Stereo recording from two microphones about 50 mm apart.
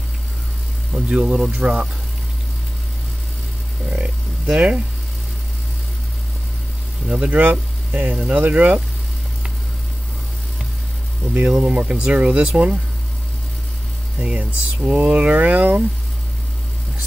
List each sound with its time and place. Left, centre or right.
0.9 s speech: right
3.9 s a sound: right
7.1 s speech: right
11.7 s speech: right
14.2 s speech: right